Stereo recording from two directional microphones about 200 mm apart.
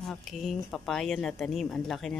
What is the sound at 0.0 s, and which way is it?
Speech, centre (ahead or behind).